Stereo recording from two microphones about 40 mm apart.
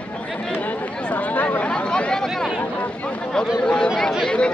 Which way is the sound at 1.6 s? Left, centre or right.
Left.